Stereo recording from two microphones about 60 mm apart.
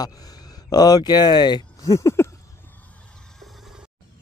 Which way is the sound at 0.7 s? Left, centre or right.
Left.